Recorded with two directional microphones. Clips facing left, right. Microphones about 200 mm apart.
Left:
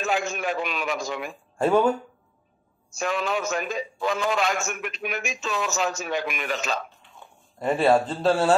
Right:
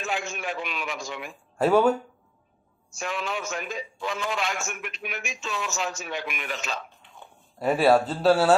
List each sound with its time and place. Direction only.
0.0 s speech: 40° left (ahead or behind)
1.6 s speech: 5° right (ahead or behind)
3.0 s a man's voice: 40° left (ahead or behind)
7.5 s speech: 5° right (ahead or behind)